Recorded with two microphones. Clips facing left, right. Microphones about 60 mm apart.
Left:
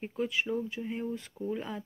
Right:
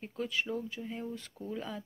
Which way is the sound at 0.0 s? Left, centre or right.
Left.